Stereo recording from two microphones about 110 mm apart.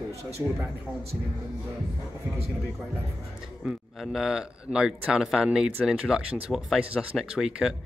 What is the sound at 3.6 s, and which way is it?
Speech, 5° right (ahead or behind).